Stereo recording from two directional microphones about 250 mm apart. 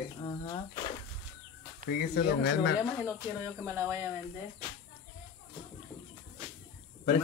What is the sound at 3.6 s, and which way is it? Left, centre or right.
Speech, centre.